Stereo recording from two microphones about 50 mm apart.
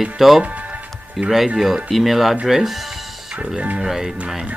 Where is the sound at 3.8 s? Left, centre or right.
Centre.